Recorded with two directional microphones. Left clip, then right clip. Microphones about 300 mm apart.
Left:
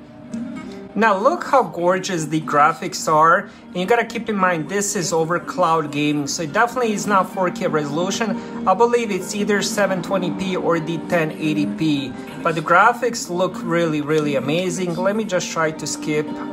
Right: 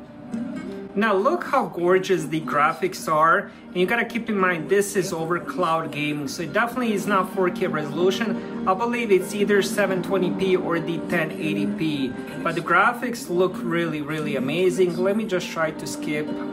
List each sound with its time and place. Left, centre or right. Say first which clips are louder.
0.9 s speech: left 4 dB; centre